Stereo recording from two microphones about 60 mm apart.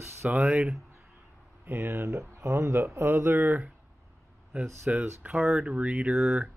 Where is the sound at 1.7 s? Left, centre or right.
Right.